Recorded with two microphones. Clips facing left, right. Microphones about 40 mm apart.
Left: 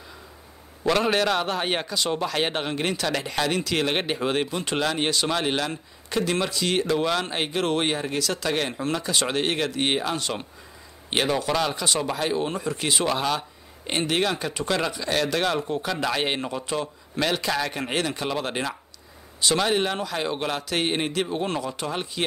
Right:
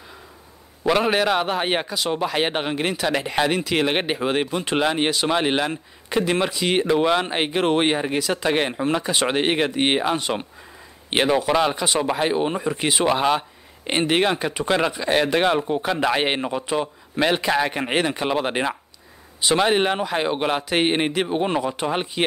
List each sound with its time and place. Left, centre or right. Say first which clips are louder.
0.8 s a man's voice: right 3 dB; centre